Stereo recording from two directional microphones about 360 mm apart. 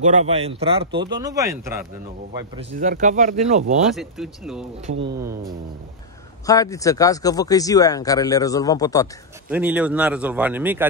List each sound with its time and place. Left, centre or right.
0.0 s speech: centre
2.5 s speech: right
3.8 s speech: centre
4.9 s speech: right
6.4 s speech: centre
9.5 s speech: centre